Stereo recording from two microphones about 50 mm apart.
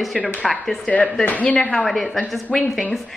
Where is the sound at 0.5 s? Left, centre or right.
Centre.